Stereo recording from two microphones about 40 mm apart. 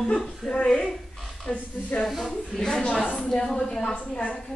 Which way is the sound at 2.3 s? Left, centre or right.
Centre.